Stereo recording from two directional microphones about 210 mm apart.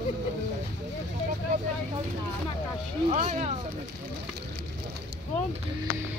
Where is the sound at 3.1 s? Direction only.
35° right (ahead or behind).